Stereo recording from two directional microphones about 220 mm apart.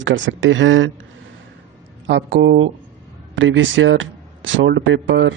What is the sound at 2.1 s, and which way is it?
Speech, 55° right (ahead or behind).